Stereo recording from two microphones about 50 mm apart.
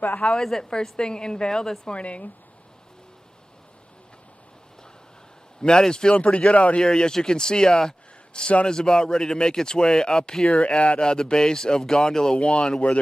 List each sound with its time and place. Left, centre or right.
0.4 s a woman's voice: centre
5.6 s a woman's voice: centre
6.8 s a woman's voice: centre